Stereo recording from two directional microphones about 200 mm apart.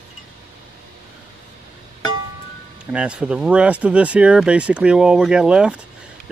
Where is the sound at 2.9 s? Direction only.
5° right (ahead or behind).